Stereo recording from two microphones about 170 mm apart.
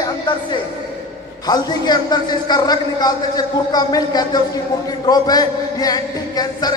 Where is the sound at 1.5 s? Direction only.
25° left (ahead or behind).